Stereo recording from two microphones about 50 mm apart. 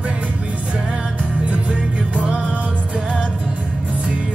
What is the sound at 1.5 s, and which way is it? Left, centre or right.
Music, right.